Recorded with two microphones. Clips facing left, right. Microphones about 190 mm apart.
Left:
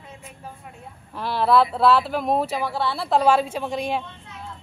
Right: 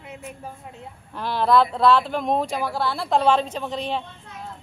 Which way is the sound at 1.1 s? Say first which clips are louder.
Even; centre (ahead or behind).